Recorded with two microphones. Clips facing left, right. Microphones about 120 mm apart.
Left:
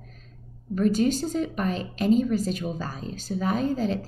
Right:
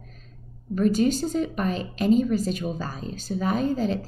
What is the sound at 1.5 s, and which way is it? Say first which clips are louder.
A woman's voice: right 1 dB; 15° right (ahead or behind).